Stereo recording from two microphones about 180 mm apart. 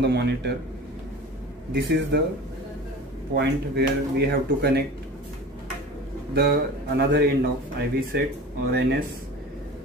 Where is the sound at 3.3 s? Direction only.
70° right (ahead or behind).